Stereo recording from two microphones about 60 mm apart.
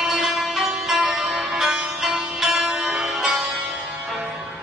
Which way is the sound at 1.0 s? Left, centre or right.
Centre.